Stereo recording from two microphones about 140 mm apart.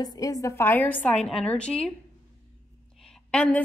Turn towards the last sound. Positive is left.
turn(degrees=10)  # may be behind; listen again after turning